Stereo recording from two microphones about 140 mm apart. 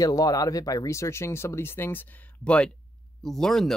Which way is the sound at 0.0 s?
25° left (ahead or behind).